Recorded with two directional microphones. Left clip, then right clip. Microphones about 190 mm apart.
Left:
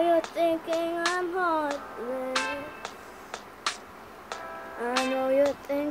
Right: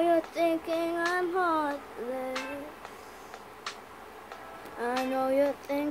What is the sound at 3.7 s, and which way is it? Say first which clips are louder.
Finger snapping: left 9 dB; 55° left (ahead or behind).